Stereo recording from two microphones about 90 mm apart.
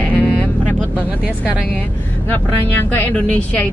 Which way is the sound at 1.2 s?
10° right (ahead or behind).